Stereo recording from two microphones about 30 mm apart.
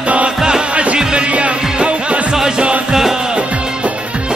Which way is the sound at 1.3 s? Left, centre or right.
Right.